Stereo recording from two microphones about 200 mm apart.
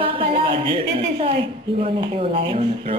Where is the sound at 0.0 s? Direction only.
25° right (ahead or behind).